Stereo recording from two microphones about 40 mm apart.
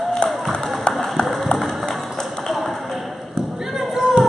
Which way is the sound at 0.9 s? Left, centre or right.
Left.